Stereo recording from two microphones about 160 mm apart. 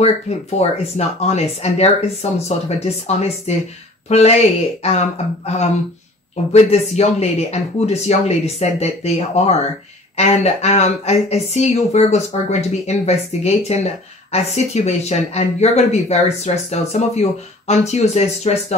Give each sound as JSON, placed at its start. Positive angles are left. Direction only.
{"t": 0.6, "sound": "speech", "side_deg": 40}